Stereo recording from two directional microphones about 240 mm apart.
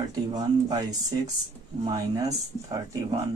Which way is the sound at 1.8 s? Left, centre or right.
Centre.